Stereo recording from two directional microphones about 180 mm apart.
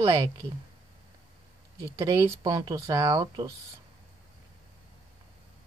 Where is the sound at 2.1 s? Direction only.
20° right (ahead or behind).